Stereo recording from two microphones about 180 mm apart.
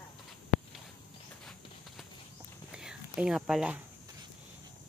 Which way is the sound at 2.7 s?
5° right (ahead or behind).